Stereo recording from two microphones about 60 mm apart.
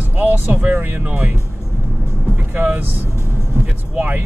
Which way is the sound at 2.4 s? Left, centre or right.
Right.